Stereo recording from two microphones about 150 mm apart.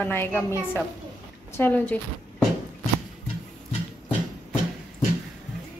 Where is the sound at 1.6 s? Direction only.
15° left (ahead or behind).